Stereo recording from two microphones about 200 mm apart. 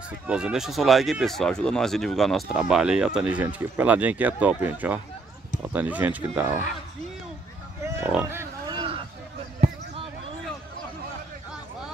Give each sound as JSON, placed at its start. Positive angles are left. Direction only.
{"t": 0.3, "sound": "speech", "side_deg": -5}
{"t": 7.8, "sound": "wild animals", "side_deg": -10}
{"t": 8.7, "sound": "a sound", "side_deg": -25}